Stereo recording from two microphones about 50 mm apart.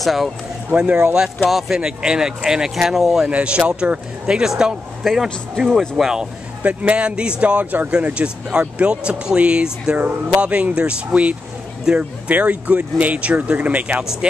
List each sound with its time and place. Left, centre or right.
0.0 s speech: centre
0.7 s speech: right
1.1 s speech: centre
3.3 s speech: right
4.3 s speech: centre
6.6 s speech: right
9.9 s speech: right